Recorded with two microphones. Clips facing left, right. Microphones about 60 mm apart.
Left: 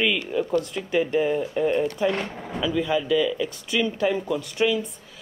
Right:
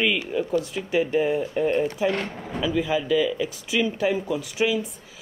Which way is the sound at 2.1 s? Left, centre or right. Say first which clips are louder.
Even; centre.